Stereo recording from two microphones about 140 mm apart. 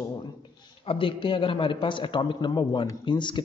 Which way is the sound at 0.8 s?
40° left (ahead or behind).